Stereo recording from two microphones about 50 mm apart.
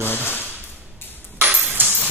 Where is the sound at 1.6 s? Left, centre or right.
Right.